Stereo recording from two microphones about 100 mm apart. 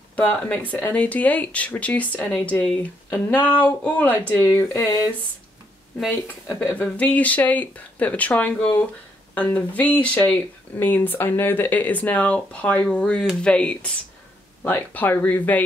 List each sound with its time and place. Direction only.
0.1 s speech: 15° left (ahead or behind)
5.9 s speech: centre (ahead or behind)
6.7 s speech: 15° left (ahead or behind)